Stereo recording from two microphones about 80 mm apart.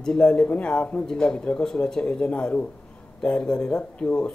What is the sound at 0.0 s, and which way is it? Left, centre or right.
Speech, centre.